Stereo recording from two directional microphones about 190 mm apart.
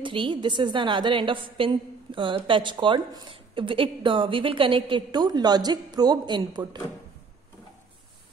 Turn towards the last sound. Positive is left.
turn(degrees=-25)  # may be behind; listen again after turning